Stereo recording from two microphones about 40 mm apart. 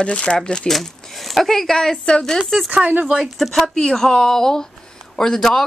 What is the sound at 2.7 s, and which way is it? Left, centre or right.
Speech, right.